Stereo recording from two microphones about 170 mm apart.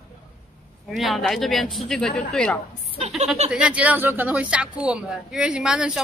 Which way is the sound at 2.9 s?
40° right (ahead or behind).